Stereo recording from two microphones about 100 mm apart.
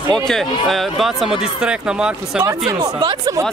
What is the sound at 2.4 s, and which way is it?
Speech, 50° right (ahead or behind).